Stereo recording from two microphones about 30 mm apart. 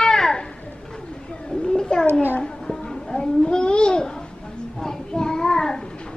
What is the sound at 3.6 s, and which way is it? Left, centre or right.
Babbling, left.